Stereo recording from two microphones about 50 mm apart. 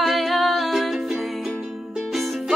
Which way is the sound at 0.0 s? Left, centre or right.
Centre.